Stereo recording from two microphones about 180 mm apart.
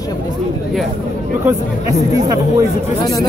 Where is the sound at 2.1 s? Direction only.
20° right (ahead or behind).